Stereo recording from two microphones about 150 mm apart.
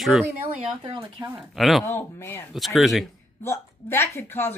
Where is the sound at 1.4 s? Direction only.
Centre (ahead or behind).